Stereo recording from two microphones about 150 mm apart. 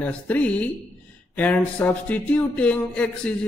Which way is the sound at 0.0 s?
10° left (ahead or behind).